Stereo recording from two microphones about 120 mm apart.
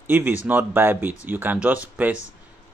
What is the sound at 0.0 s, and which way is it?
Speech, 15° right (ahead or behind).